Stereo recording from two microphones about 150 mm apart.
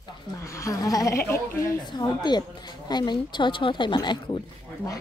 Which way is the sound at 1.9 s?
30° left (ahead or behind).